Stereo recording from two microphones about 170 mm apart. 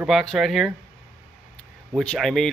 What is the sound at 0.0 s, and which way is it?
Speech, centre (ahead or behind).